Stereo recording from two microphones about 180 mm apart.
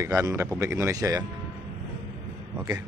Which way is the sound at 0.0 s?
15° right (ahead or behind).